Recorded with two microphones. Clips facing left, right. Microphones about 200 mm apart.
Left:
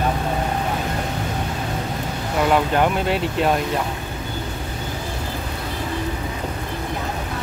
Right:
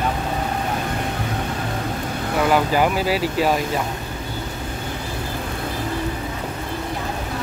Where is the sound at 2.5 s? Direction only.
5° right (ahead or behind).